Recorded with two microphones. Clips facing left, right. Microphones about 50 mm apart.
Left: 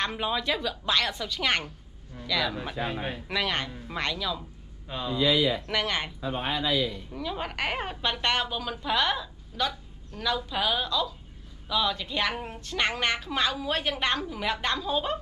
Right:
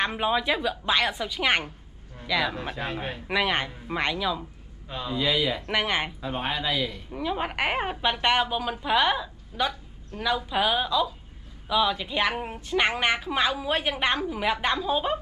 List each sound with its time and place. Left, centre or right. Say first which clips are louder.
0.0 s a woman's voice: right 4 dB; centre
2.9 s a man's voice: even; centre
3.3 s a woman's voice: right 5 dB; centre
4.8 s speech: left 1 dB; centre
5.2 s speech: left 2 dB; right
5.7 s a woman's voice: right 3 dB; centre
6.2 s speech: even; right
7.1 s a woman's voice: right 4 dB; centre